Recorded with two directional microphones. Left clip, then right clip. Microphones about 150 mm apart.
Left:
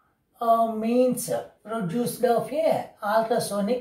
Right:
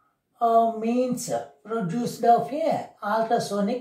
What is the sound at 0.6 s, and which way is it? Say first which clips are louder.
Speech: right 1 dB; 15° right (ahead or behind).